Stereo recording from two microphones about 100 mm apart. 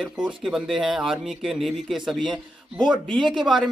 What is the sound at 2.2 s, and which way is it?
Speech, 50° right (ahead or behind).